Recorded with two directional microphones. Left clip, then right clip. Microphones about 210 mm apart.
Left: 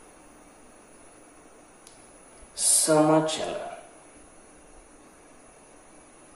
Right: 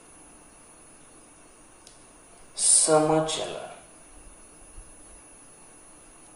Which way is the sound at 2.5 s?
15° left (ahead or behind).